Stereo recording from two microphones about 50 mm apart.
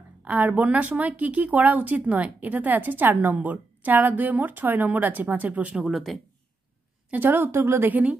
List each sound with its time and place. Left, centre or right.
0.2 s speech: right
5.9 s speech: centre
7.1 s a woman's voice: right
7.8 s speech: right